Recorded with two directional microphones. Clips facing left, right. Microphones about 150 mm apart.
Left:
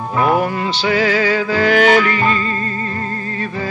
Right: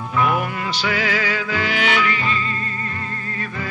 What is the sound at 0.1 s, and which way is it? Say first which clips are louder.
Music: left 5 dB; 35° left (ahead or behind).